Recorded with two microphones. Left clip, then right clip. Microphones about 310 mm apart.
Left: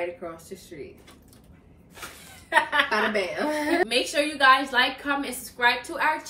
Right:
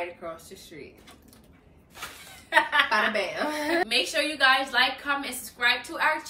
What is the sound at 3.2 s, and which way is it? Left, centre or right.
Speech, centre.